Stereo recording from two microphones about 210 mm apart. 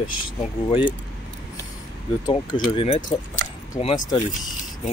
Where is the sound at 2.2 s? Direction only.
20° left (ahead or behind).